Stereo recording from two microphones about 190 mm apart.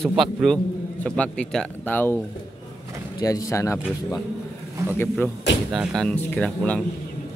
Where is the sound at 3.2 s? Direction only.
20° left (ahead or behind).